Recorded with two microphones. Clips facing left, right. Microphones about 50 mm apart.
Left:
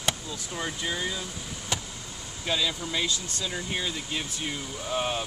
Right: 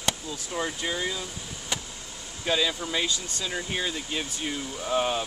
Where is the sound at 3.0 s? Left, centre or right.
Right.